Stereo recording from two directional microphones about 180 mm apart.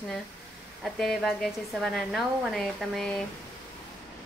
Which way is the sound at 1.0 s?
Centre (ahead or behind).